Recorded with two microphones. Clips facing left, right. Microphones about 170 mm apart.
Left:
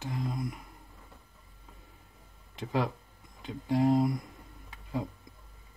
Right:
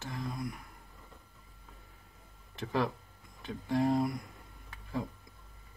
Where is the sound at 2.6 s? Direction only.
20° left (ahead or behind).